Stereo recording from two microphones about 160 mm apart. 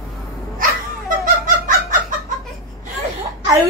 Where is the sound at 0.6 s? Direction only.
60° right (ahead or behind).